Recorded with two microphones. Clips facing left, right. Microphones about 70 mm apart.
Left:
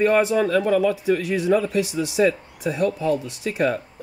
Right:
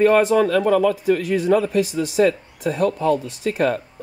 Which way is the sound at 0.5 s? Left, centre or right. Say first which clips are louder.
Right 2 dB; right.